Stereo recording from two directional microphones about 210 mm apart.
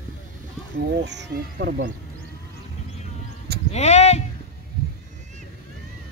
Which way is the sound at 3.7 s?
30° left (ahead or behind).